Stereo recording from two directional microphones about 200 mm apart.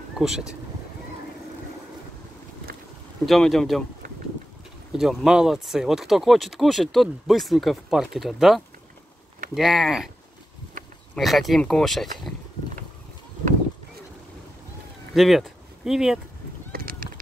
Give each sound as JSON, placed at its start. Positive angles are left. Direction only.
{"t": 0.2, "sound": "speech", "side_deg": 0}
{"t": 3.3, "sound": "speech", "side_deg": 0}
{"t": 4.9, "sound": "speech", "side_deg": 0}
{"t": 11.1, "sound": "speech", "side_deg": 0}
{"t": 15.1, "sound": "speech", "side_deg": 0}
{"t": 16.7, "sound": "a sound", "side_deg": -45}